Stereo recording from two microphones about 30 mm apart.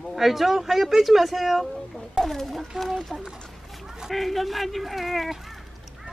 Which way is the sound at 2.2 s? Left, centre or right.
Centre.